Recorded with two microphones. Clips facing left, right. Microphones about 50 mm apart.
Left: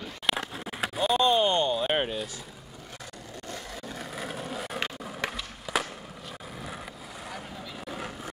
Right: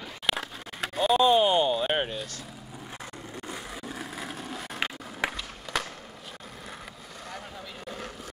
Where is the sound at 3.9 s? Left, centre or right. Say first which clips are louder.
Left 1 dB; centre.